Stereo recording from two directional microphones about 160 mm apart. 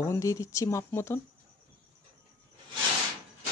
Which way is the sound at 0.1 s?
20° left (ahead or behind).